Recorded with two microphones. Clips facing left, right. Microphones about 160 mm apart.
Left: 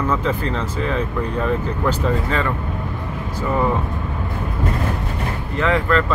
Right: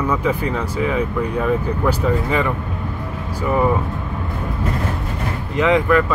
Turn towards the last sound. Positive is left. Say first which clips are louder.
# right 3 dB
turn(degrees=-15)  # may be behind; listen again after turning